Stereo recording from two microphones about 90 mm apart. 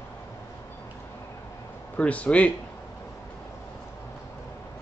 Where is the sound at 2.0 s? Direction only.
15° left (ahead or behind).